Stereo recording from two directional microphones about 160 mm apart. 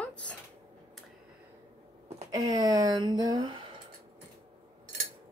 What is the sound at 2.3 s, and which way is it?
Speech, 25° right (ahead or behind).